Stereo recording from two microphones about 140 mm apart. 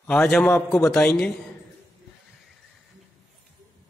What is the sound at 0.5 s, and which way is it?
Speech, 20° left (ahead or behind).